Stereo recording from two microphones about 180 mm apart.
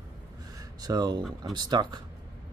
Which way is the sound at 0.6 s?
20° right (ahead or behind).